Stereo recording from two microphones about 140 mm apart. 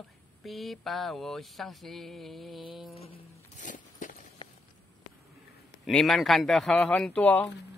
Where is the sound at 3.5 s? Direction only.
65° left (ahead or behind).